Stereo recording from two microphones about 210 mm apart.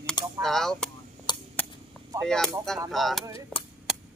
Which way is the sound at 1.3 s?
20° left (ahead or behind).